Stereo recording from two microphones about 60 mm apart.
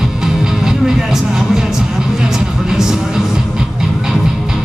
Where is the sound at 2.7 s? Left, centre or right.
Centre.